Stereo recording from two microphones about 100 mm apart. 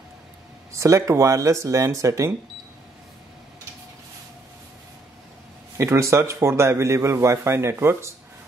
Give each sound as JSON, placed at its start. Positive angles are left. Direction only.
{"t": 0.7, "sound": "speech", "side_deg": -30}
{"t": 5.8, "sound": "a man's voice", "side_deg": -30}